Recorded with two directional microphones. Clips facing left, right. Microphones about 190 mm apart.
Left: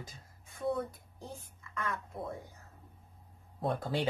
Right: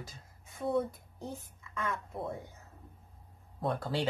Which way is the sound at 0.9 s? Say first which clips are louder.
Right 4 dB; 25° right (ahead or behind).